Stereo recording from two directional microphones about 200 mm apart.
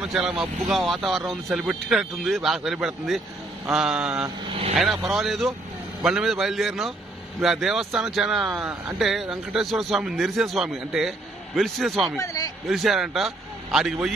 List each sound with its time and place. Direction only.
0.0 s a man's voice: 5° right (ahead or behind)
4.5 s speech: 30° right (ahead or behind)
5.0 s a man's voice: centre (ahead or behind)